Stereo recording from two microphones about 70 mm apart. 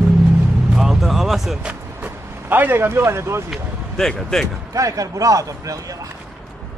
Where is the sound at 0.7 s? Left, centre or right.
Centre.